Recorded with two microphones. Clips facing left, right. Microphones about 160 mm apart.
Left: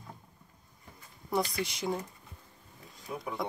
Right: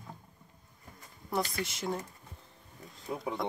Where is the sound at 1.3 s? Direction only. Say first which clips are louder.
Left 2 dB; centre (ahead or behind).